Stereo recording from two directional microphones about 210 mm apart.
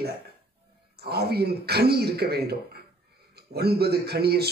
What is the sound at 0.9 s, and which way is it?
Speech, 50° right (ahead or behind).